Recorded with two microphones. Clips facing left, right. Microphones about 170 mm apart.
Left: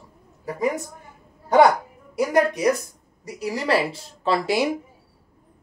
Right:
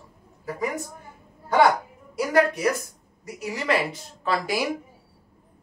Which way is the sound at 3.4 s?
35° left (ahead or behind).